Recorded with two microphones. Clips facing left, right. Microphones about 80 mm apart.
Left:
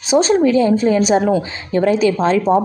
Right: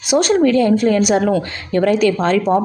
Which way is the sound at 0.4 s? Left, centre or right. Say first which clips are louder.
Even; centre.